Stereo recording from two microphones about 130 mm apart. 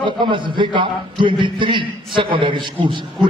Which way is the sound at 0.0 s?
35° right (ahead or behind).